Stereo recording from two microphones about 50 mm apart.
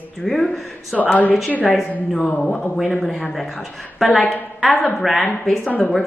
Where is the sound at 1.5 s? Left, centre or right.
Left.